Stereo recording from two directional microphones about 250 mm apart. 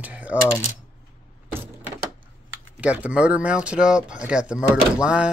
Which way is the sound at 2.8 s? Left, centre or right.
Centre.